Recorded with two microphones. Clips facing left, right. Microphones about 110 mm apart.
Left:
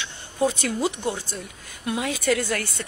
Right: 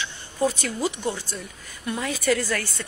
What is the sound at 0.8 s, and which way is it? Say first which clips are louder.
Speech: even; 25° left (ahead or behind).